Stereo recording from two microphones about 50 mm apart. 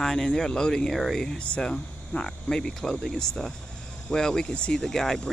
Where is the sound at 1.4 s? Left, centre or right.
Left.